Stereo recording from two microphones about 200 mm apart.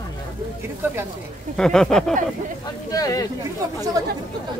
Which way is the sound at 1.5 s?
5° left (ahead or behind).